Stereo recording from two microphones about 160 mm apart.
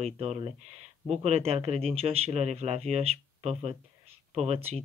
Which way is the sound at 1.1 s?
40° right (ahead or behind).